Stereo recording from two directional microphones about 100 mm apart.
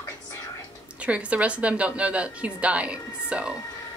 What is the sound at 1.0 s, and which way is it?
A woman's voice, 10° right (ahead or behind).